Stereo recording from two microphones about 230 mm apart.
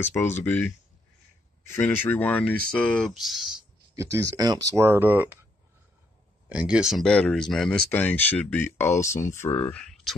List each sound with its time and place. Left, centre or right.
0.0 s speech: centre
2.1 s speech: centre
3.9 s speech: centre
6.5 s speech: centre